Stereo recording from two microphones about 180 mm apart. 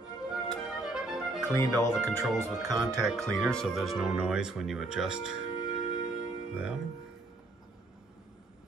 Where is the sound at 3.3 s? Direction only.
Centre (ahead or behind).